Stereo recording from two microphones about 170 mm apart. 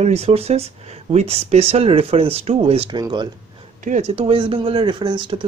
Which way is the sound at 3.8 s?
45° right (ahead or behind).